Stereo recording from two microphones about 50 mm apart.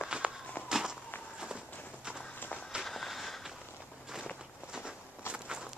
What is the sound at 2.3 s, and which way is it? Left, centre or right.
Walk, left.